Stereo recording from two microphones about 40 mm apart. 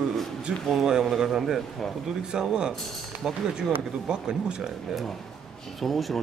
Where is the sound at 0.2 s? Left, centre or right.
Centre.